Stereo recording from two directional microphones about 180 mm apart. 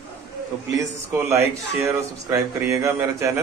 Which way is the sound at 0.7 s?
20° right (ahead or behind).